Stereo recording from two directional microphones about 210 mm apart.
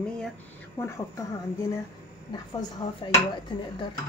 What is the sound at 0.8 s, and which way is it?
Speech, 15° left (ahead or behind).